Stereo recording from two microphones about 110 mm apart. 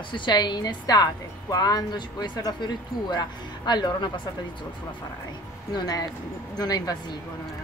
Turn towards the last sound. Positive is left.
turn(degrees=35)  # may be behind; listen again after turning